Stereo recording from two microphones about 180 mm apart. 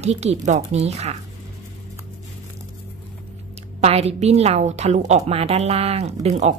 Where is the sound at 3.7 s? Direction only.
35° right (ahead or behind).